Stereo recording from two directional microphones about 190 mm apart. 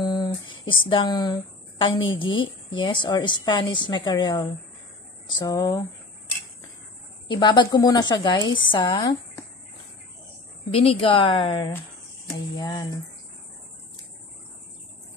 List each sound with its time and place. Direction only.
0.0 s a woman's voice: 25° left (ahead or behind)
7.2 s a woman's voice: 25° left (ahead or behind)
10.7 s a woman's voice: 30° left (ahead or behind)